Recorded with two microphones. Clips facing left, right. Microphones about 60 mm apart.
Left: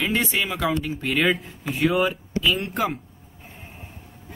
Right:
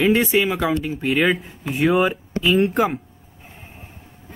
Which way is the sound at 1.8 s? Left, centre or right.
Right.